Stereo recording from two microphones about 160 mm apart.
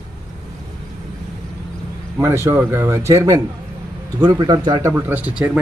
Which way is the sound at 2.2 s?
20° right (ahead or behind).